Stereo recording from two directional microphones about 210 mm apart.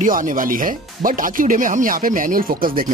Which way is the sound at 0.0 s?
40° right (ahead or behind).